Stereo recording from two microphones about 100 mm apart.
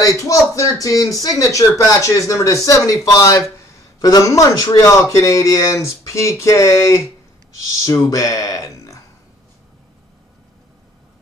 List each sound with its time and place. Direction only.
0.2 s speech: 35° left (ahead or behind)